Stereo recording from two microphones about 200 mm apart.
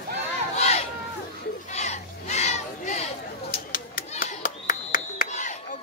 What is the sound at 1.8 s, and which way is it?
Crowd, 35° left (ahead or behind).